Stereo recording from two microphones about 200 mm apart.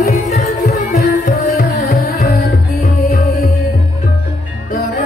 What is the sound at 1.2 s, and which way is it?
Tabla, 45° left (ahead or behind).